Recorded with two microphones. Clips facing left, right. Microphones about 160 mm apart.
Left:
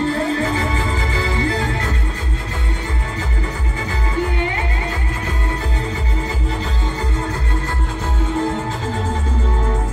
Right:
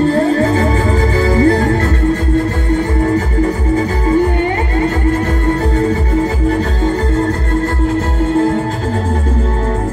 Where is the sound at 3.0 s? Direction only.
45° right (ahead or behind).